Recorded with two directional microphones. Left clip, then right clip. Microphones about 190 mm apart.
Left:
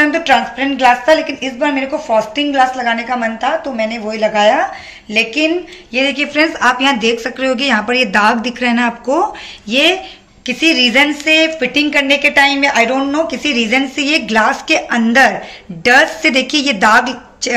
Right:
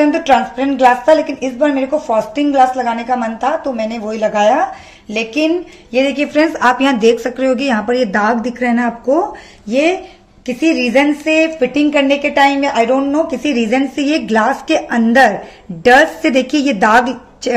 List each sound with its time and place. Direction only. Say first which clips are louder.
0.1 s speech: even; 45° right (ahead or behind)